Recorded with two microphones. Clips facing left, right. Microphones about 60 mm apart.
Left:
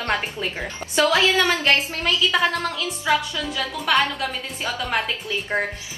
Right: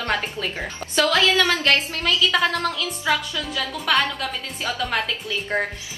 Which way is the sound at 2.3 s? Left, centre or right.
Centre.